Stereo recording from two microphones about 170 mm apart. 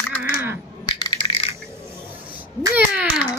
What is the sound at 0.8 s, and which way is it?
Coin, 25° left (ahead or behind).